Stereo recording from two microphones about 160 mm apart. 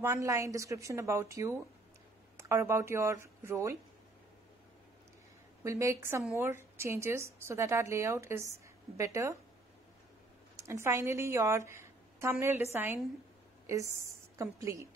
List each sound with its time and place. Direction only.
0.0 s a woman's voice: 20° right (ahead or behind)
5.6 s a woman's voice: 20° right (ahead or behind)
10.5 s a woman's voice: 15° right (ahead or behind)